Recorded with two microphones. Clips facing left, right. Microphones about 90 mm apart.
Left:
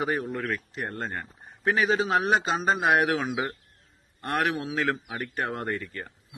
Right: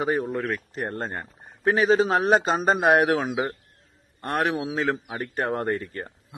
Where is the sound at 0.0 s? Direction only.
25° right (ahead or behind).